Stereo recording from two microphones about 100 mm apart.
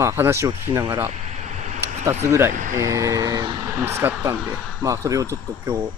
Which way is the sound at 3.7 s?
25° right (ahead or behind).